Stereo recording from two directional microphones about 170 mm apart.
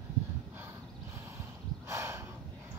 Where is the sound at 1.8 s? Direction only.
15° right (ahead or behind).